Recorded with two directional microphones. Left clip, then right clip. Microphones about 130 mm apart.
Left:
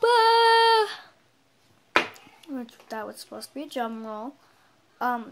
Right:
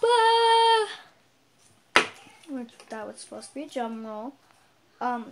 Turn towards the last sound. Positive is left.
turn(degrees=10)  # may be behind; listen again after turning